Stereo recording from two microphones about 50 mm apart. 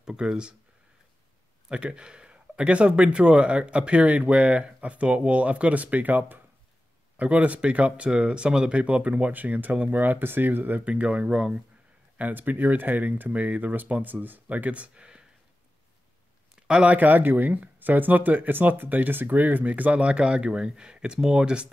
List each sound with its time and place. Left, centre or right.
0.0 s speech: centre
1.7 s speech: centre; by 6.4 s right
7.2 s speech: right
10.9 s speech: right
12.2 s speech: right; by 15.2 s centre
16.5 s a sound: centre
16.9 s speech: right; by 21.6 s centre